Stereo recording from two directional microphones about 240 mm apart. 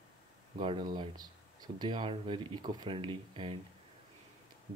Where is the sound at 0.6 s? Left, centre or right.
Right.